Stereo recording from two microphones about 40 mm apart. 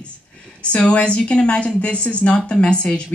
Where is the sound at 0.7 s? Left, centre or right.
Left.